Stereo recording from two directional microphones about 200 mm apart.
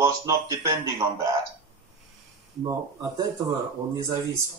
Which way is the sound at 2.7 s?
20° right (ahead or behind).